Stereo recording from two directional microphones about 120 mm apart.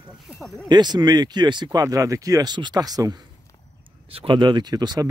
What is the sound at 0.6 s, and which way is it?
Speech, 35° right (ahead or behind).